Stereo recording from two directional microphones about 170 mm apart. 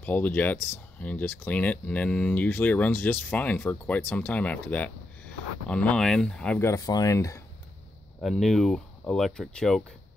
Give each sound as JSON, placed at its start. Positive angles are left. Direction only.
{"t": 0.0, "sound": "speech", "side_deg": 10}
{"t": 6.7, "sound": "speech", "side_deg": 20}
{"t": 8.2, "sound": "speech", "side_deg": 0}